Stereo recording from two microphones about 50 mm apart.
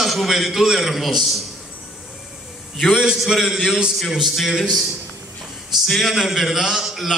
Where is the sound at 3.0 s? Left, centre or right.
Centre.